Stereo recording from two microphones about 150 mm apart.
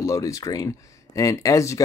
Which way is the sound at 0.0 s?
20° left (ahead or behind).